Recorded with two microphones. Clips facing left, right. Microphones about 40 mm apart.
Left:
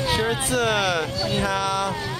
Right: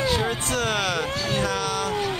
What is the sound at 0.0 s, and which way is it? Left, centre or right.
Speech, centre.